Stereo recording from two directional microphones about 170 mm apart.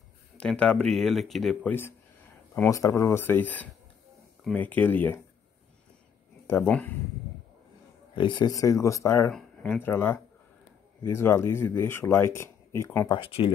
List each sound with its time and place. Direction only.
0.4 s speech: 5° left (ahead or behind)
6.4 s speech: 15° left (ahead or behind)
8.2 s speech: 25° left (ahead or behind)
13.1 s speech: 30° left (ahead or behind)